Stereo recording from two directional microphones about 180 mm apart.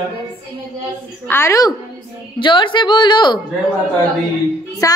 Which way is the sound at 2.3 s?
25° left (ahead or behind).